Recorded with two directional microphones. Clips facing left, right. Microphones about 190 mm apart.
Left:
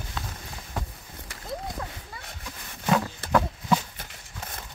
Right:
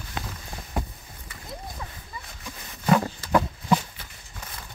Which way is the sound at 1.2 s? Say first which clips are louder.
Left 5 dB; 75° left (ahead or behind).